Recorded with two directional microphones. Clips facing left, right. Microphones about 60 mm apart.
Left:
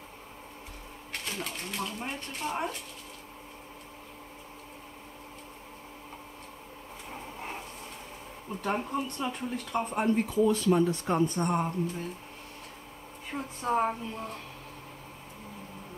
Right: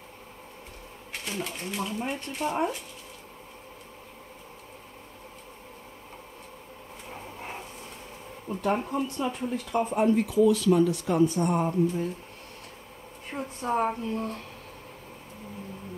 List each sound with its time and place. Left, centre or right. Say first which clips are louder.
1.1 s speech: right 2 dB; centre
7.1 s a sound: even; centre
8.6 s speech: right 4 dB; centre
10.2 s speech: right 4 dB; left
11.4 s speech: right 4 dB; centre
13.3 s speech: right 1 dB; centre